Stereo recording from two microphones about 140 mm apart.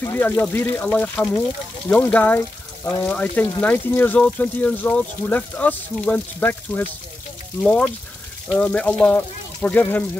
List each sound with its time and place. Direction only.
0.0 s speech: 15° left (ahead or behind)